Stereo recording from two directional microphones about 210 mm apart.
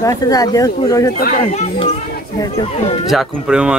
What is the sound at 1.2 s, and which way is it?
Speech, 40° left (ahead or behind).